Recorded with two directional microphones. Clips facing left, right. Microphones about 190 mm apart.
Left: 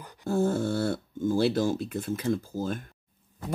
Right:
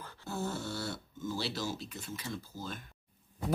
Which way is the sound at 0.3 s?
50° left (ahead or behind).